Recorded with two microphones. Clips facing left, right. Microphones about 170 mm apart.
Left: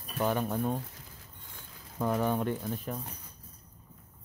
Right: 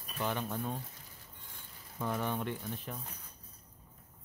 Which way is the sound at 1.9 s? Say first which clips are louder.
Left 6 dB; 45° left (ahead or behind).